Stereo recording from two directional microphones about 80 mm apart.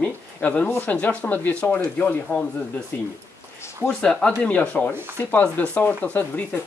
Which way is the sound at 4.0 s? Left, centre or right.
Centre.